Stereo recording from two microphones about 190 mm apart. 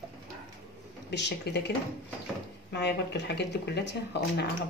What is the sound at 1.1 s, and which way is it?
Speech, 65° left (ahead or behind).